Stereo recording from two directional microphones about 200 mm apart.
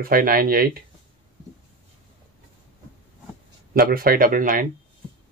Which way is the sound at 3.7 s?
50° right (ahead or behind).